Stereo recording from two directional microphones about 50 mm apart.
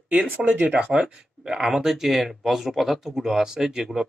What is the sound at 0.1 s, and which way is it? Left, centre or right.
Speech, centre.